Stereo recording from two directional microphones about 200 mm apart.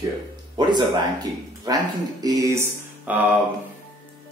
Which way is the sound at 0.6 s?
20° right (ahead or behind).